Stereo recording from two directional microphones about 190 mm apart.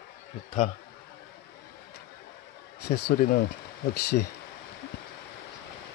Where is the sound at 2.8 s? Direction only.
60° left (ahead or behind).